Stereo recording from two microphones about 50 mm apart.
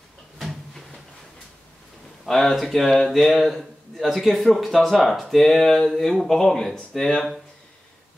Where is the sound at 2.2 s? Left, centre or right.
Centre.